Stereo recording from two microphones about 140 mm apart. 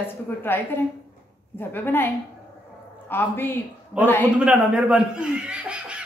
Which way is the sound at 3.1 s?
15° left (ahead or behind).